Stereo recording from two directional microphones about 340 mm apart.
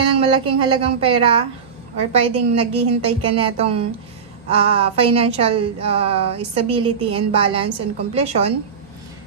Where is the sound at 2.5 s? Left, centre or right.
Centre.